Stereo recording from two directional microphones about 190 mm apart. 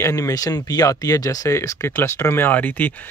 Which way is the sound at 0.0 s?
20° left (ahead or behind).